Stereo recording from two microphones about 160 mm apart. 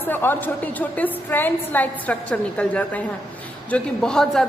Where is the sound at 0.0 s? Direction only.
15° left (ahead or behind).